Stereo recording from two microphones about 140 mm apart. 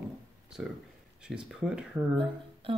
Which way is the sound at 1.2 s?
5° right (ahead or behind).